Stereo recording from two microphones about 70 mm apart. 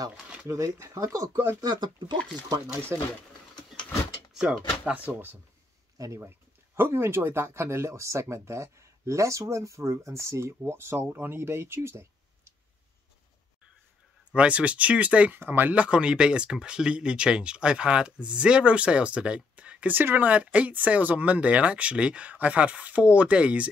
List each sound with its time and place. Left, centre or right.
0.2 s speech: centre
0.5 s speech: right
1.6 s speech: right
4.3 s a sound: centre
4.8 s speech: right
5.9 s speech: right
6.2 s speech: right
14.3 s speech: centre
15.4 s speech: right
15.7 s speech: centre